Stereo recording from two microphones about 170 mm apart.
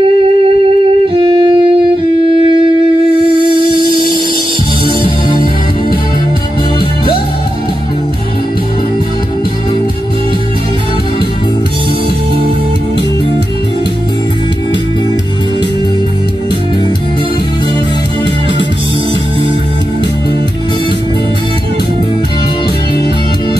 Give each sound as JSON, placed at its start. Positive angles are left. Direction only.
{"t": 1.1, "sound": "music", "side_deg": -30}